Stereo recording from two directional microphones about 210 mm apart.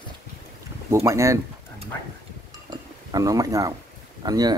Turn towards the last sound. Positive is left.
turn(degrees=-20)  # may be behind; listen again after turning